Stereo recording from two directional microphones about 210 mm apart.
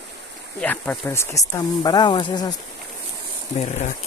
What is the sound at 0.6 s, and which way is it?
Speech, 5° left (ahead or behind).